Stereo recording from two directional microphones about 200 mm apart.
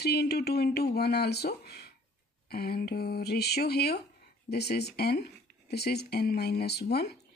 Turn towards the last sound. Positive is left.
turn(degrees=55)  # may be behind; listen again after turning